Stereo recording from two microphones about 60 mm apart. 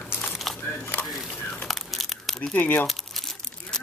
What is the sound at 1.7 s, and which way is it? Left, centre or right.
Crumpling, centre.